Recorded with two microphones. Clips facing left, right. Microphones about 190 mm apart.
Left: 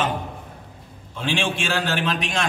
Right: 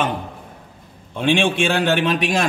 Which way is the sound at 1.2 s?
60° right (ahead or behind).